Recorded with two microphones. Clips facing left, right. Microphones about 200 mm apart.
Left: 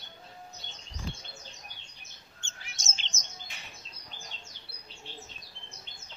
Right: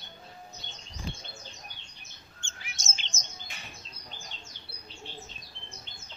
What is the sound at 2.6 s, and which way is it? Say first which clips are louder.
Chirp: right 2 dB; 10° right (ahead or behind).